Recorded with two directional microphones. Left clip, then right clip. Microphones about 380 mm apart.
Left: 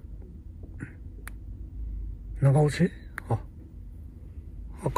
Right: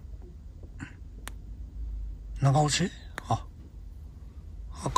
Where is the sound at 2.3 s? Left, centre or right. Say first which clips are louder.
Even; right.